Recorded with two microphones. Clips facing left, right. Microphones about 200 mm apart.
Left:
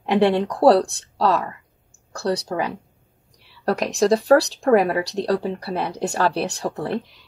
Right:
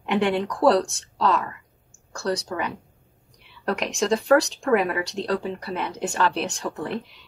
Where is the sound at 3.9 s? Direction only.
35° left (ahead or behind).